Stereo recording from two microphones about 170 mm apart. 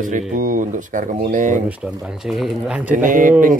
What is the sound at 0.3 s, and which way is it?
Speech, 50° right (ahead or behind).